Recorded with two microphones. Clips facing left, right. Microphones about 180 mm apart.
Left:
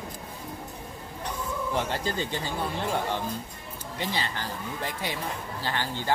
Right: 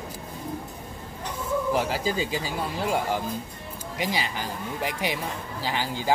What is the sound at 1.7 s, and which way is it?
Speech, 5° right (ahead or behind).